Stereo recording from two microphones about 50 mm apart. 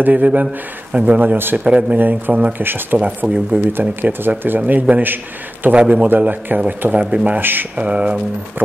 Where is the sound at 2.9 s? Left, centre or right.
Right.